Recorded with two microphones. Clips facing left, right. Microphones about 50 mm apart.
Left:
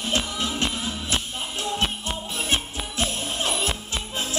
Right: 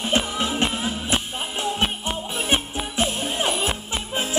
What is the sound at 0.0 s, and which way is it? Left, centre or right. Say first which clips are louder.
Music: right 3 dB; right.